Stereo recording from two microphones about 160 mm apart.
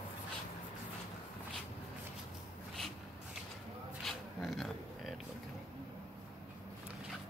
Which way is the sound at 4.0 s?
Centre (ahead or behind).